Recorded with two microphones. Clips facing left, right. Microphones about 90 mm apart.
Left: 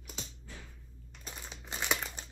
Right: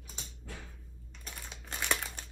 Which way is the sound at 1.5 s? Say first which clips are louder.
Even; 15° left (ahead or behind).